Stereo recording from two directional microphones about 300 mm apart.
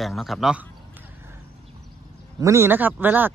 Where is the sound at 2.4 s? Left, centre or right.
Centre.